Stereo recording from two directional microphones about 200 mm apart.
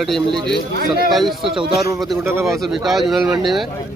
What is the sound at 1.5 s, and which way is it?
Speech, 25° right (ahead or behind).